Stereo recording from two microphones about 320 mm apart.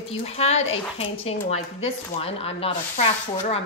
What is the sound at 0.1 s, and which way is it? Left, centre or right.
A woman's voice, centre.